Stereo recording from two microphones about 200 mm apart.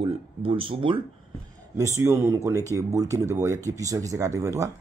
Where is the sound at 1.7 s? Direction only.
15° right (ahead or behind).